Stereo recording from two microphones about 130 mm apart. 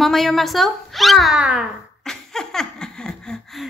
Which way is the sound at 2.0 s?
5° left (ahead or behind).